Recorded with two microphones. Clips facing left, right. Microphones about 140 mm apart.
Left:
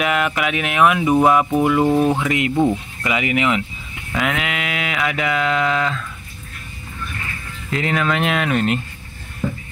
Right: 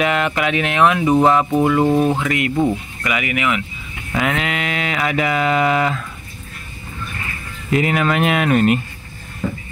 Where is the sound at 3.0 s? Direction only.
25° left (ahead or behind).